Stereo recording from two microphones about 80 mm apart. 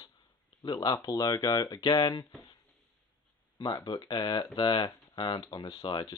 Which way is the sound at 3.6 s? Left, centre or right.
Left.